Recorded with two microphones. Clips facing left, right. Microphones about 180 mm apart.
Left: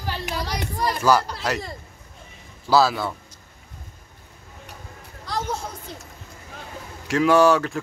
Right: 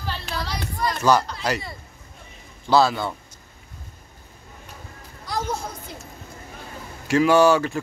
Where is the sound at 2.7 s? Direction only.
5° left (ahead or behind).